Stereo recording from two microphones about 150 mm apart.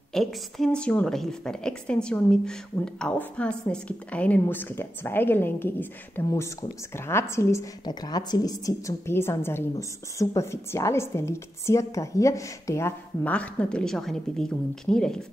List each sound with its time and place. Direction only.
0.1 s a woman's voice: centre (ahead or behind)